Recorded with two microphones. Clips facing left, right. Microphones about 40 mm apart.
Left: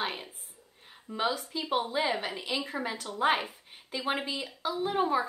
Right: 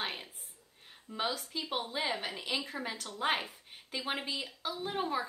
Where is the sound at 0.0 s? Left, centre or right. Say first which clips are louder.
Left 4 dB; centre.